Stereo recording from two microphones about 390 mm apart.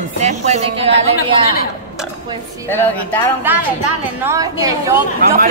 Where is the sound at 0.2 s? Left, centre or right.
Centre.